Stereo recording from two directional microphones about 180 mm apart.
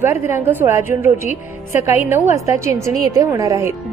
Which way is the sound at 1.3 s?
40° left (ahead or behind).